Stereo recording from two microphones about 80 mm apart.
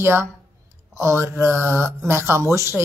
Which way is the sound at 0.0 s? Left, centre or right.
Right.